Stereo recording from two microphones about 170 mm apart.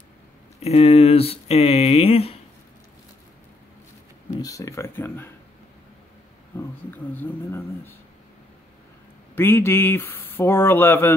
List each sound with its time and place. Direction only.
0.6 s speech: 40° left (ahead or behind)
4.4 s speech: 20° left (ahead or behind)
6.5 s speech: 10° left (ahead or behind)
9.3 s speech: 15° left (ahead or behind)